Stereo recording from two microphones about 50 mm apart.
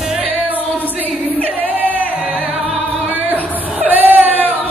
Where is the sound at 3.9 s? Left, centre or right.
Right.